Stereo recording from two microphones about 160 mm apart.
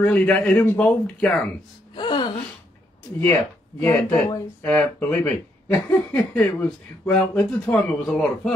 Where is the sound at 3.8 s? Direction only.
15° left (ahead or behind).